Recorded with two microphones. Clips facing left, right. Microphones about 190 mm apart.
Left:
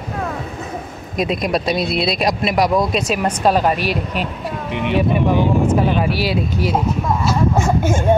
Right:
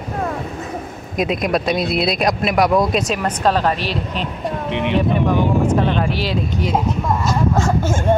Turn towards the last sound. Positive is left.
turn(degrees=15)  # may be behind; listen again after turning